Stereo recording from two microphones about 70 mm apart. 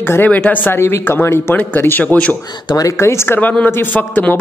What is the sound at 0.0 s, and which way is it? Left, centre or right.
A man's voice, left.